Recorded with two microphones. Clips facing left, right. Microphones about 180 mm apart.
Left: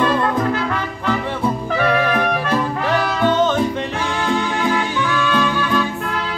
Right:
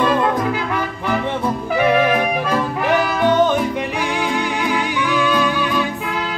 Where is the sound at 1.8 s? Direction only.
15° right (ahead or behind).